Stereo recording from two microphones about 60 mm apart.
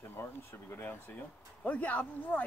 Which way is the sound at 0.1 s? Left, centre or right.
Left.